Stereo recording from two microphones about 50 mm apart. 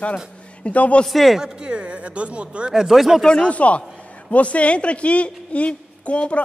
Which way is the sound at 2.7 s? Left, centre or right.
Centre.